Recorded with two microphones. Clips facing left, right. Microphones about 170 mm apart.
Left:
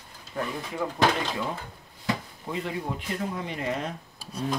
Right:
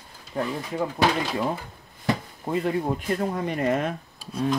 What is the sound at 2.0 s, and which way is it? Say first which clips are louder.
Speech: right 4 dB; 45° right (ahead or behind).